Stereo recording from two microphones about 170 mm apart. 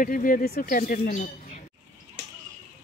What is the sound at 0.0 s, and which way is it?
Speech, 55° left (ahead or behind).